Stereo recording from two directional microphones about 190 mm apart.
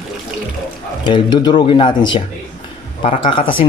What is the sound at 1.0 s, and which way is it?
Speech, 25° left (ahead or behind).